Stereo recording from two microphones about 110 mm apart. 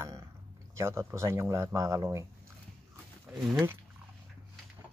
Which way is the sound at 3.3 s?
10° right (ahead or behind).